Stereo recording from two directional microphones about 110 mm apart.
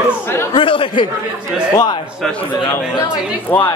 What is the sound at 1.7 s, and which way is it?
Speech, 40° left (ahead or behind).